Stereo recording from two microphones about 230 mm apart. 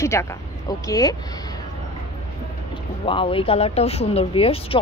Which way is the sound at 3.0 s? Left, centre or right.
Left.